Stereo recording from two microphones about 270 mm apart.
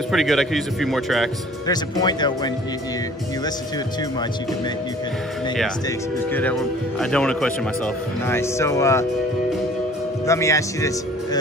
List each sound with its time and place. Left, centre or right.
0.1 s speech: centre
1.7 s speech: centre
6.3 s speech: centre
10.2 s speech: centre